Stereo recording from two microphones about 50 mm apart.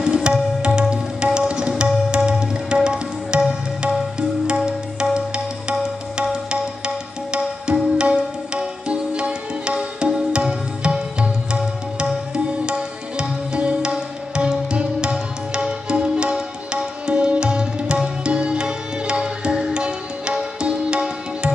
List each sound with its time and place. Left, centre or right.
0.0 s tabla: centre
2.0 s music: centre
4.5 s music: centre
7.2 s music: centre